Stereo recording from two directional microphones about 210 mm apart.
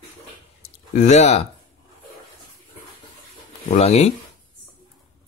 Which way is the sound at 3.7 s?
30° left (ahead or behind).